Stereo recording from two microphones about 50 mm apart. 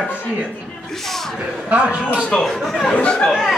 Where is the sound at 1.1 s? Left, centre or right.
Centre.